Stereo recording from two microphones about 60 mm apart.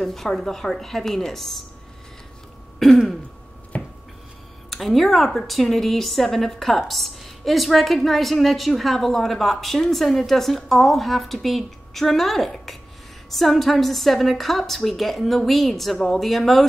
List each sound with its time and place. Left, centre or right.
0.0 s a woman's voice: centre
2.8 s a woman's voice: centre
3.7 s a sound: left
4.6 s a woman's voice: centre